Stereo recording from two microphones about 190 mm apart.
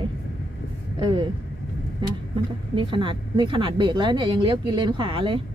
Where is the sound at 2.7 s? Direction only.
25° right (ahead or behind).